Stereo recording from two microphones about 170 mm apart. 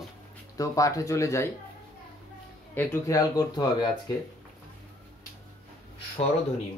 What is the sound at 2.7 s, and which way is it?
Speech, 15° left (ahead or behind).